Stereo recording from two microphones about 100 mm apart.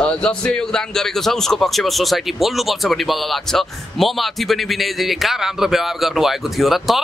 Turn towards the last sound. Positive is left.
turn(degrees=0)  # may be behind; listen again after turning